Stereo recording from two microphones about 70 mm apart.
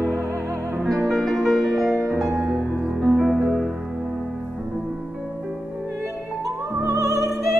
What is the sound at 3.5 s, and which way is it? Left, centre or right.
Music, centre.